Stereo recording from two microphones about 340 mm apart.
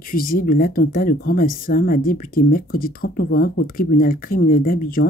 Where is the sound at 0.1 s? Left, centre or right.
Left.